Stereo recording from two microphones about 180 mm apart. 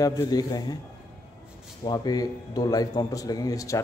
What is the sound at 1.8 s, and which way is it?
A man's voice, 20° left (ahead or behind).